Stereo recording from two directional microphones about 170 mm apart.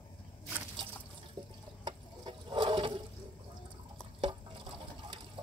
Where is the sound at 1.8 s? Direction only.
25° right (ahead or behind).